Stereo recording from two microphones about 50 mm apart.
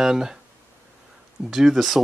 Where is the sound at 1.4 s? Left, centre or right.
Centre.